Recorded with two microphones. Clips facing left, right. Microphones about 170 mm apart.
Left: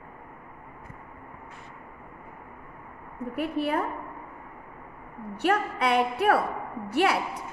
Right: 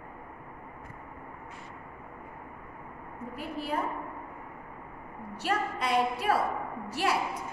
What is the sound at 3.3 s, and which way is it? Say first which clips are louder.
Speech: left 7 dB; 65° left (ahead or behind).